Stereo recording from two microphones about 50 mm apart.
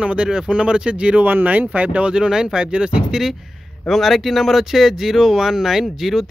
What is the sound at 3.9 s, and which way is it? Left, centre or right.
Speech, centre.